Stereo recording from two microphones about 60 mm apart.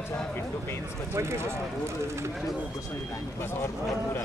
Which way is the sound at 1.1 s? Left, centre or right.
Right.